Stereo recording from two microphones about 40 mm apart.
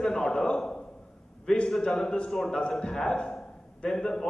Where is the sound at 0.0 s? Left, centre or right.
Centre.